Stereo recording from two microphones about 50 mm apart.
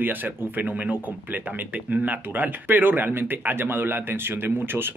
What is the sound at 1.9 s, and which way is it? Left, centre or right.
Speech, right.